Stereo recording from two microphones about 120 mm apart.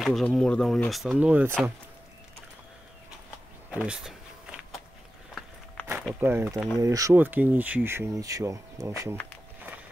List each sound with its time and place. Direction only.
0.0 s speech: centre (ahead or behind)
3.7 s a sound: 10° right (ahead or behind)
6.1 s speech: 20° right (ahead or behind)
7.2 s speech: 15° right (ahead or behind)
9.1 s walk: 15° left (ahead or behind)